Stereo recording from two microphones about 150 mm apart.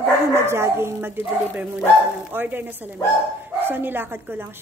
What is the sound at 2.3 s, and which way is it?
Speech, 15° right (ahead or behind).